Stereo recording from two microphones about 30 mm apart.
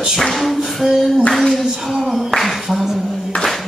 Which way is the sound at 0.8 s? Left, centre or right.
Centre.